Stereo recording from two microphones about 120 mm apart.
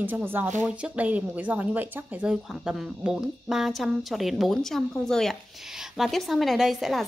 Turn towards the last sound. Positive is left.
turn(degrees=0)  # may be behind; listen again after turning